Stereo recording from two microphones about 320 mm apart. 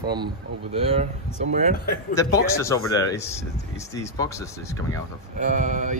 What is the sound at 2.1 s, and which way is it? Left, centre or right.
Speech, centre.